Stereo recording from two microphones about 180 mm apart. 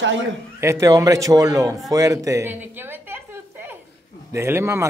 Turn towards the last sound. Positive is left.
turn(degrees=-15)  # may be behind; listen again after turning